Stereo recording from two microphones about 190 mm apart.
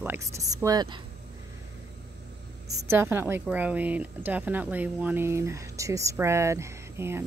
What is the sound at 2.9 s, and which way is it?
Speech, 10° right (ahead or behind).